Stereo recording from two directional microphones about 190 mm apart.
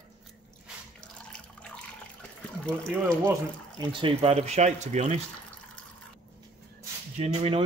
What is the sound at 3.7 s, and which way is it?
Speech, 30° right (ahead or behind).